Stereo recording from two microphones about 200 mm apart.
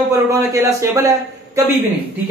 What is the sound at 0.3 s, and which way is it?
A man's voice, 15° right (ahead or behind).